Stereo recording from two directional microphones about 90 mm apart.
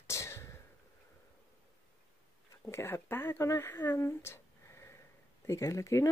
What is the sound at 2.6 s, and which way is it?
Speech, 30° left (ahead or behind).